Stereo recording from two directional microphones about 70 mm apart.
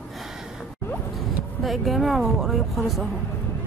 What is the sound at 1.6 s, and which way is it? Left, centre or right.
Speech, centre.